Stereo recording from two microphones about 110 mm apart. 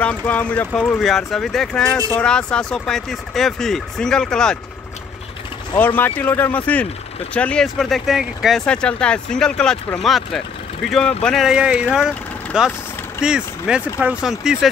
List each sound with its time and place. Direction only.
0.0 s speech: 10° left (ahead or behind)
5.8 s speech: 15° left (ahead or behind)
7.6 s speech: centre (ahead or behind)
8.6 s speech: 10° left (ahead or behind)